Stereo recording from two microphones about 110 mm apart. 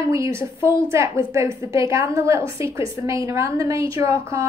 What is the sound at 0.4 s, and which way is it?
A woman's voice, 25° right (ahead or behind).